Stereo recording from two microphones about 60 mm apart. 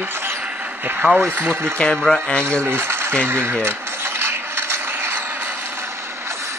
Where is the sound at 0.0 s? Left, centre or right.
Right.